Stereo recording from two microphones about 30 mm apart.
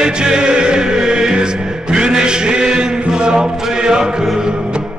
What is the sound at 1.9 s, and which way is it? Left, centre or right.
Chant, right.